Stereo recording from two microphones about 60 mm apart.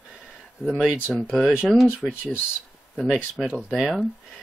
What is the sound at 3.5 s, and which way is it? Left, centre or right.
Speech, centre.